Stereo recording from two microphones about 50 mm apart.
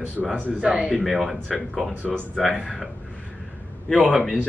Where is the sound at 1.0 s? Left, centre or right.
Centre.